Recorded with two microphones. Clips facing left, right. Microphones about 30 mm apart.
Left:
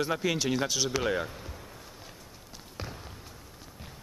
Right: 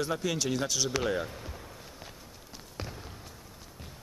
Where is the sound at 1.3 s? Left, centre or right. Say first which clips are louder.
Right 1 dB; centre.